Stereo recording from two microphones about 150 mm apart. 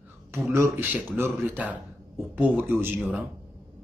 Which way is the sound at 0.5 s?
20° right (ahead or behind).